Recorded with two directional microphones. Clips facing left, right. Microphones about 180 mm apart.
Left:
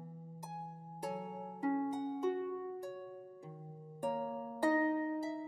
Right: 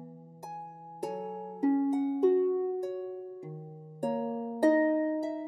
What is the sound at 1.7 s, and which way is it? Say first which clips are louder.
Music: right 9 dB; 30° right (ahead or behind).